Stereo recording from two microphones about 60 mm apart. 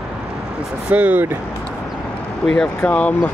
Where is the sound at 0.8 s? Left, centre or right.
Right.